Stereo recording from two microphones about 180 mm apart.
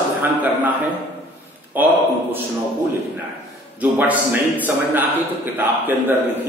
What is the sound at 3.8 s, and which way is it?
A man's voice, 10° right (ahead or behind).